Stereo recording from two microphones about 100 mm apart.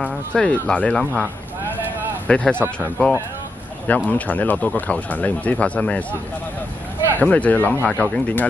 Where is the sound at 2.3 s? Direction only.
10° left (ahead or behind).